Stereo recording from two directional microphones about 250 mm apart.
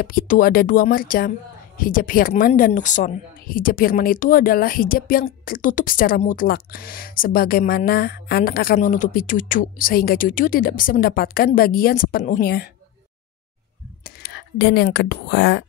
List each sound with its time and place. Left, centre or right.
0.0 s a woman's voice: left
14.0 s speech: left